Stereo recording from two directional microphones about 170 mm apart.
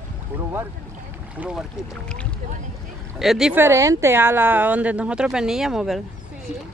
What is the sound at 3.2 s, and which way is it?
Speech, centre (ahead or behind).